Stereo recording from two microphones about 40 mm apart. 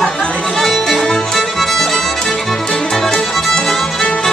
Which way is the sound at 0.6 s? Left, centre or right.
Centre.